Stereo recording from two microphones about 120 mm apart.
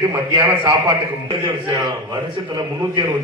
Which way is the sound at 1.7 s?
30° right (ahead or behind).